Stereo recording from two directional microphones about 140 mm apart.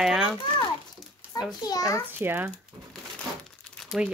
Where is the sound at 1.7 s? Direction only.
25° left (ahead or behind).